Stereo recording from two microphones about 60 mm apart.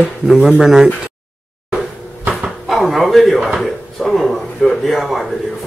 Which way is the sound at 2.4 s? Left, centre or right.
Centre.